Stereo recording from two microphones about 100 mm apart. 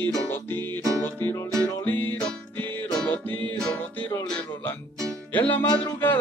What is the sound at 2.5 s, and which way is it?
Music, 15° left (ahead or behind).